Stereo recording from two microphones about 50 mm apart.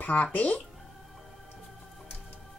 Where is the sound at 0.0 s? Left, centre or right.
Left.